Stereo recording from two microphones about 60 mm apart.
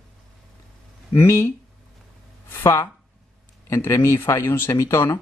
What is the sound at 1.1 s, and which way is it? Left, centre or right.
Speech, left.